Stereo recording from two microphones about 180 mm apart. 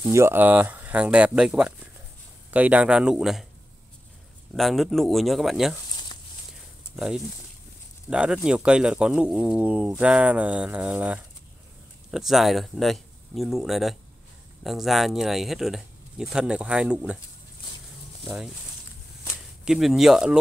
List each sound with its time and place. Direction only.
0.0 s speech: 15° right (ahead or behind)
4.6 s speech: centre (ahead or behind)
7.0 s speech: 5° right (ahead or behind)
18.2 s speech: 5° right (ahead or behind)
19.6 s speech: centre (ahead or behind)